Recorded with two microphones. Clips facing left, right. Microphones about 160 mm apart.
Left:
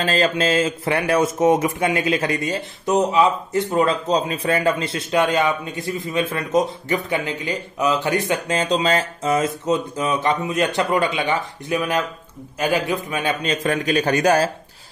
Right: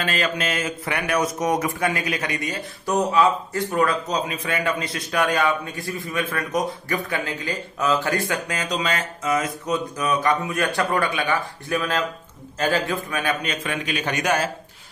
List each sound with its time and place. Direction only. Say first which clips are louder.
0.0 s a man's voice: left 5 dB; 30° left (ahead or behind)